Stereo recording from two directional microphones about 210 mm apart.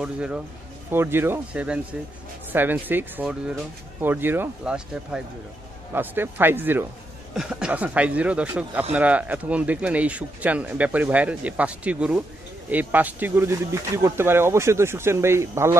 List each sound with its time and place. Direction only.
0.0 s a man's voice: 5° right (ahead or behind)